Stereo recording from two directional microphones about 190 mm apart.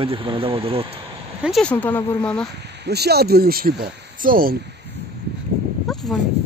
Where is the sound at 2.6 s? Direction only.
60° right (ahead or behind).